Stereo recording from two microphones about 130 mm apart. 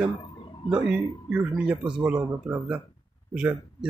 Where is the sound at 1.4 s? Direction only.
5° right (ahead or behind).